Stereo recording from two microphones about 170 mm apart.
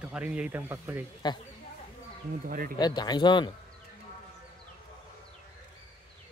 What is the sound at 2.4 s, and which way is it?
Speech, 55° right (ahead or behind).